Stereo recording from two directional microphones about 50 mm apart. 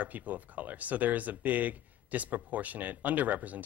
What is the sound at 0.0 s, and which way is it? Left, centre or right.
Speech, right.